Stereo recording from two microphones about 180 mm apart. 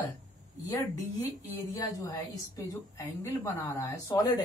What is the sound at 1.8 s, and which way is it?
A woman's voice, 20° left (ahead or behind).